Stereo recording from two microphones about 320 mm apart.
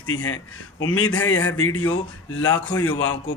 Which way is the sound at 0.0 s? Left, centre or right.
Left.